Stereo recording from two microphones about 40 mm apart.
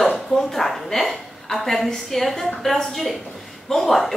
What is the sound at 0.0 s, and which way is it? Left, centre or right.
A woman's voice, centre.